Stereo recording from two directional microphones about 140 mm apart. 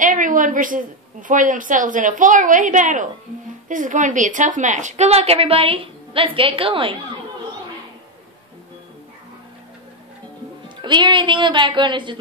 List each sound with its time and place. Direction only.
0.0 s a woman's voice: 70° right (ahead or behind); by 7.0 s 40° right (ahead or behind)
10.8 s a woman's voice: 30° right (ahead or behind)